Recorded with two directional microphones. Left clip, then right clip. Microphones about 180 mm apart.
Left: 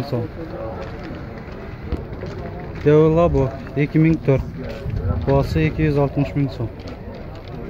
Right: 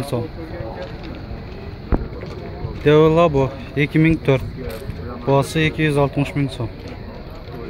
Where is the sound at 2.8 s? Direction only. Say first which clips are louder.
Right 1 dB; 5° right (ahead or behind).